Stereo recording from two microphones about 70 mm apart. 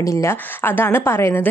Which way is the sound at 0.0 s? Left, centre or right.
Left.